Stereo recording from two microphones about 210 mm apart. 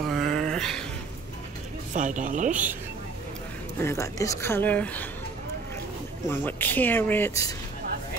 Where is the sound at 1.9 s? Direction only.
35° right (ahead or behind).